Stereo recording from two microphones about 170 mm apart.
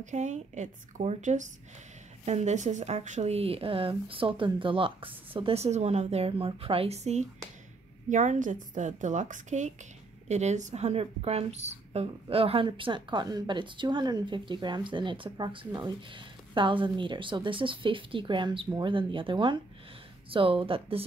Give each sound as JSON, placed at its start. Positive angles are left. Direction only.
{"t": 0.0, "sound": "a woman's voice", "side_deg": -45}